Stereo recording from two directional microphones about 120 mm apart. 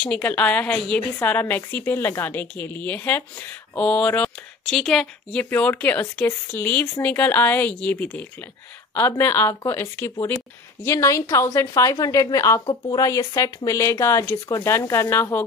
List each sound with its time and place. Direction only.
0.0 s a woman's voice: 10° left (ahead or behind)